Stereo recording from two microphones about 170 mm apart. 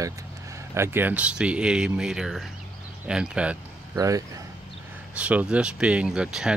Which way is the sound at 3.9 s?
20° right (ahead or behind).